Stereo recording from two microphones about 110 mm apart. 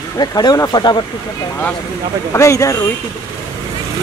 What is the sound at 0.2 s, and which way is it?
Speech, 40° left (ahead or behind).